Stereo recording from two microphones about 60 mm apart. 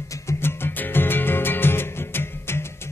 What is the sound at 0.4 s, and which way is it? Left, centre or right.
Music, left.